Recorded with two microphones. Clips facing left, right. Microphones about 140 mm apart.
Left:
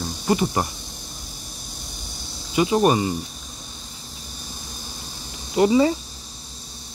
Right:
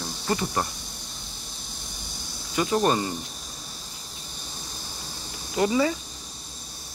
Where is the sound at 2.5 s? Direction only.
15° left (ahead or behind).